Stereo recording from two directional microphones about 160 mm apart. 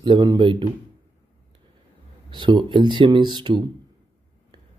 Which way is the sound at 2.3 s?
30° right (ahead or behind).